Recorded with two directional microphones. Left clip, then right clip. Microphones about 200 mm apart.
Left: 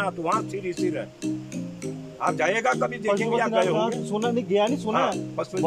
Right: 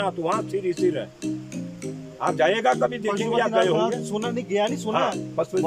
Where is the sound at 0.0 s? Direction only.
5° right (ahead or behind).